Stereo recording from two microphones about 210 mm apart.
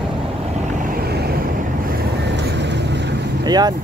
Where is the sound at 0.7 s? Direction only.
40° right (ahead or behind).